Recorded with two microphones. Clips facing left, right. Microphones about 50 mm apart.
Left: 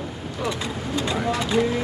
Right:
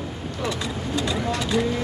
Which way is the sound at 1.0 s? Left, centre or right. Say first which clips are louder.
Left 1 dB; centre.